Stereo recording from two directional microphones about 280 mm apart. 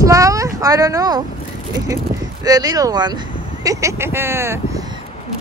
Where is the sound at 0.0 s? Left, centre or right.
Centre.